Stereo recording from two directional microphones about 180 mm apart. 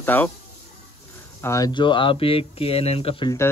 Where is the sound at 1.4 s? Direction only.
20° left (ahead or behind).